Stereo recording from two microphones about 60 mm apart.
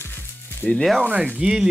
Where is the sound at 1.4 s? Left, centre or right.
Centre.